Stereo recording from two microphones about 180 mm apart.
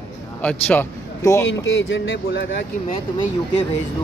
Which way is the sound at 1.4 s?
90° left.